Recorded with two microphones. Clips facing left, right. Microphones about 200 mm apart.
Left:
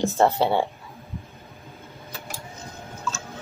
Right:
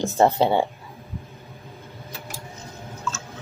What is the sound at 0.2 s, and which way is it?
Speech, 15° right (ahead or behind).